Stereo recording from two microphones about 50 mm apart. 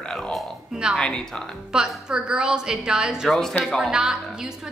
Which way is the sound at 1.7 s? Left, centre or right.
Centre.